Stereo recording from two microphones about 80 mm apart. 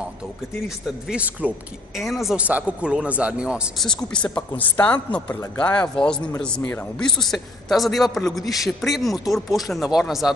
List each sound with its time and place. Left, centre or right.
1.0 s speech: centre
2.0 s a man's voice: centre
2.3 s speech: centre
3.7 s a man's voice: centre